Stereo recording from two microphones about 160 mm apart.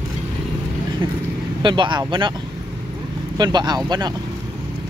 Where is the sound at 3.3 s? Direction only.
25° right (ahead or behind).